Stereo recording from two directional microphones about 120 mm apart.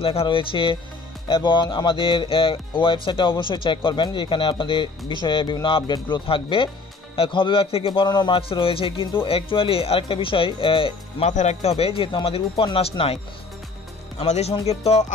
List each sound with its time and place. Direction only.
0.0 s speech: 50° left (ahead or behind)
11.2 s speech: 70° left (ahead or behind); by 13.2 s 50° left (ahead or behind)
14.1 s speech: 60° left (ahead or behind)